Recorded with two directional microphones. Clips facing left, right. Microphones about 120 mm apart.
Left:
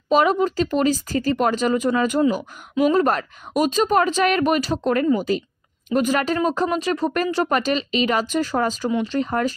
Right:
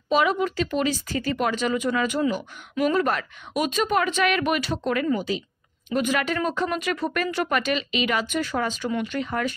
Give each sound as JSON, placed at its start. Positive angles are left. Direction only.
{"t": 0.1, "sound": "speech", "side_deg": 40}